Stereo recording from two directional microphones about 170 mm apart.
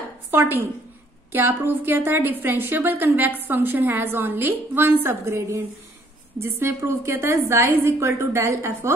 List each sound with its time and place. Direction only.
0.3 s a woman's voice: 15° right (ahead or behind)